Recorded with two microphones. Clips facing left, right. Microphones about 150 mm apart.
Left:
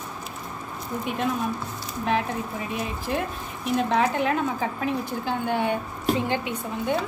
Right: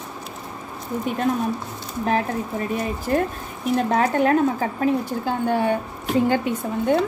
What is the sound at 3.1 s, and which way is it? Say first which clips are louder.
A woman's voice: right 8 dB; 50° right (ahead or behind).